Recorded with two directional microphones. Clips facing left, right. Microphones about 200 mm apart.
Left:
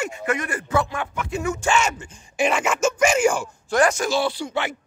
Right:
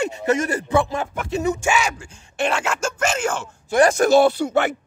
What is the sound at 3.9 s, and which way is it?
Speech, 50° right (ahead or behind).